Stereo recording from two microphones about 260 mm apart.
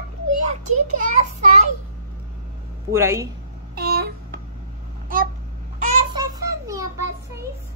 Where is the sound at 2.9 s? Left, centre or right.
Centre.